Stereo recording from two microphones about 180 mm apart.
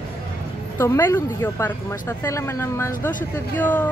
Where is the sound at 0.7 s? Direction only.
15° left (ahead or behind).